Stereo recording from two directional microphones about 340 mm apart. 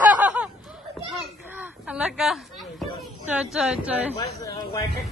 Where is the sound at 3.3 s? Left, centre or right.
Centre.